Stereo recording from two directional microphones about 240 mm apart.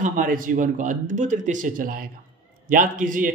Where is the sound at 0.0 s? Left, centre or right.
Right.